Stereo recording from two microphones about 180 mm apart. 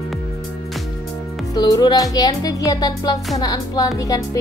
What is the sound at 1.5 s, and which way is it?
Speech, 20° left (ahead or behind).